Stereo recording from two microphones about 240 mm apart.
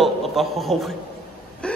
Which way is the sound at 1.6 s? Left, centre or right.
Centre.